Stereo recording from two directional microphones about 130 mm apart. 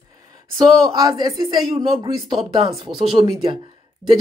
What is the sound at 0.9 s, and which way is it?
Speech, 30° right (ahead or behind).